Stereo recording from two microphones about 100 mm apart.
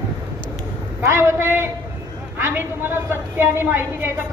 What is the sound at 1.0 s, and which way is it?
A woman's voice, 25° right (ahead or behind).